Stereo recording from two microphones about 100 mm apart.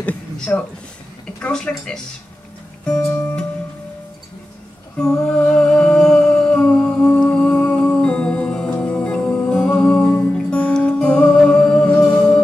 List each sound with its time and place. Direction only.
0.5 s speech: 15° left (ahead or behind)
3.1 s music: 15° left (ahead or behind)
4.9 s humming: 5° left (ahead or behind)